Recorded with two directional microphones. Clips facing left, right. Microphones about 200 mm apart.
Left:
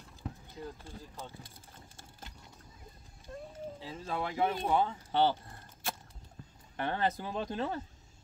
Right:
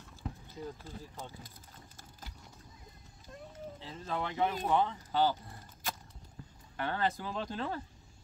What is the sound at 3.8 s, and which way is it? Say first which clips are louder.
Speech: even; 10° left (ahead or behind).